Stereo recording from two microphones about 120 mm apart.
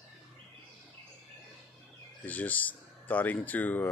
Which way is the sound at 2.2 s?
15° left (ahead or behind).